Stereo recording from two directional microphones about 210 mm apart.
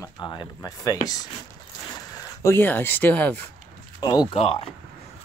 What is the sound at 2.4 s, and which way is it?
Speech, 10° left (ahead or behind).